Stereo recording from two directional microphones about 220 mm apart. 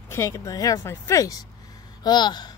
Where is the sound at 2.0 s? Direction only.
20° left (ahead or behind).